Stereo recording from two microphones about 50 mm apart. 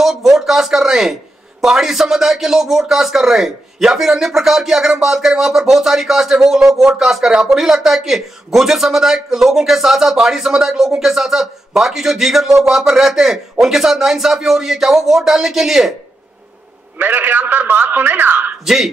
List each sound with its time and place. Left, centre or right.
0.0 s a sound: centre
1.6 s speech: centre
17.0 s a man's voice: right